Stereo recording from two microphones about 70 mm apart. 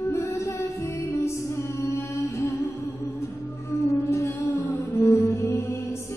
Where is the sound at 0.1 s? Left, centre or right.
Left.